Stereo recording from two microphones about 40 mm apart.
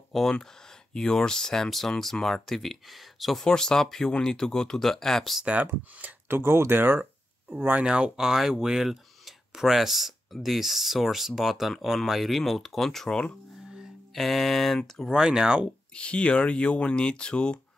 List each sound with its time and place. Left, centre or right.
0.1 s speech: centre
3.4 s speech: centre
6.2 s speech: right
7.0 s a sound: right
7.8 s speech: right
8.2 s speech: centre
13.1 s speech: left
14.1 s speech: centre
15.0 s speech: centre
15.9 s speech: left